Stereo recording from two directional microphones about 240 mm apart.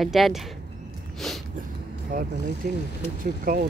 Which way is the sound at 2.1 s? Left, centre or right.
Right.